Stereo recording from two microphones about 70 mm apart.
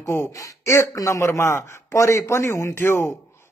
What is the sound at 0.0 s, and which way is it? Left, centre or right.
Speech, left.